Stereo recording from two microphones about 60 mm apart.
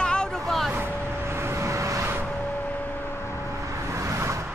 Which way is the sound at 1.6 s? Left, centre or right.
Right.